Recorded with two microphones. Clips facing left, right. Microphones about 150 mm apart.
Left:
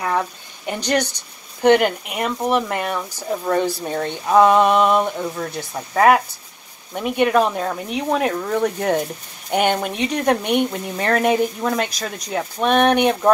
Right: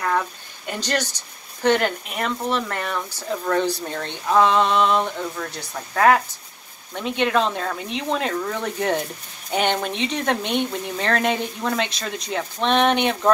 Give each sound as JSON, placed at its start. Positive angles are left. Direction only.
{"t": 0.7, "sound": "speech", "side_deg": 15}